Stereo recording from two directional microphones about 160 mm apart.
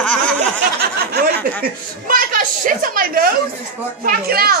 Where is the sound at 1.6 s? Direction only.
60° right (ahead or behind).